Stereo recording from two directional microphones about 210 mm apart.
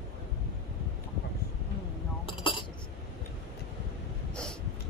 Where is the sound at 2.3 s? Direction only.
25° left (ahead or behind).